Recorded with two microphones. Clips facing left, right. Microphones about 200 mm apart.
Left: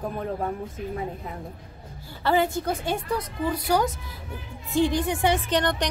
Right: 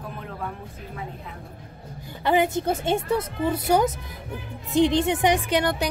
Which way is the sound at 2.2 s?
20° right (ahead or behind).